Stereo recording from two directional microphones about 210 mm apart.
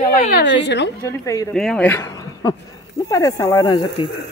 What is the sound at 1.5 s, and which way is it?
Speech, 5° left (ahead or behind).